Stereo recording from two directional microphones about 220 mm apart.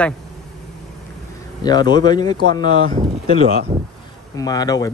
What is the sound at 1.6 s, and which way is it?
Speech, 20° left (ahead or behind).